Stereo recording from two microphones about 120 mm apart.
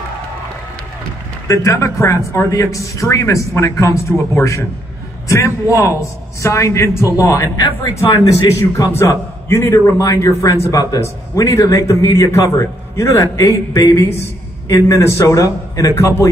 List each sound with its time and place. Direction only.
1.5 s a man's voice: 25° left (ahead or behind)